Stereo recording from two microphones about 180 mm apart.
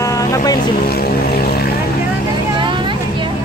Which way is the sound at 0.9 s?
60° left (ahead or behind).